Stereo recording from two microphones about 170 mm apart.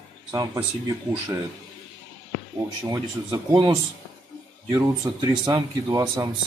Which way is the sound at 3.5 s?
25° right (ahead or behind).